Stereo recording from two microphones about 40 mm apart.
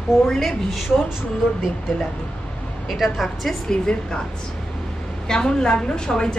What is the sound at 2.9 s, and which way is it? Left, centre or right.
Speech, centre.